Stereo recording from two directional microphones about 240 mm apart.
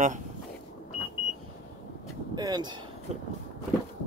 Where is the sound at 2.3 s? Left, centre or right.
Centre.